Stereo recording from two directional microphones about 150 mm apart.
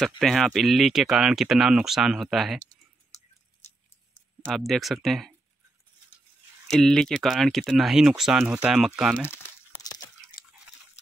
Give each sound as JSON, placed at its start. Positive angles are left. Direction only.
{"t": 0.2, "sound": "speech", "side_deg": 0}
{"t": 4.5, "sound": "speech", "side_deg": 0}
{"t": 6.7, "sound": "speech", "side_deg": 0}
{"t": 9.8, "sound": "a sound", "side_deg": 25}